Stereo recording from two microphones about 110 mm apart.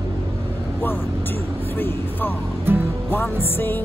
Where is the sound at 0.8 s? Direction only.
20° left (ahead or behind).